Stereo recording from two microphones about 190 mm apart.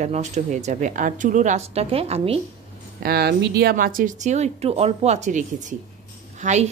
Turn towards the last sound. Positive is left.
turn(degrees=-40)  # may be behind; listen again after turning